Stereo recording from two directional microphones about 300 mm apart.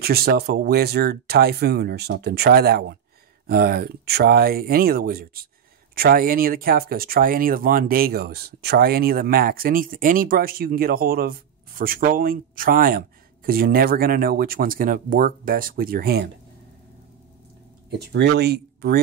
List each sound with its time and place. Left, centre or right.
0.0 s speech: right
17.8 s speech: right